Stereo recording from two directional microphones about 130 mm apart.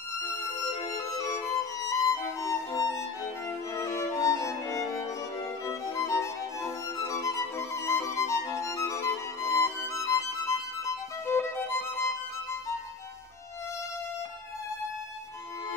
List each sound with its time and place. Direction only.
1.1 s music: 25° left (ahead or behind)
3.7 s violin: 20° left (ahead or behind)
5.7 s music: 25° left (ahead or behind)
11.2 s violin: 20° left (ahead or behind)